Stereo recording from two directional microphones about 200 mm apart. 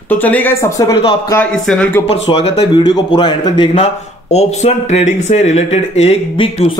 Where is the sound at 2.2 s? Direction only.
30° left (ahead or behind).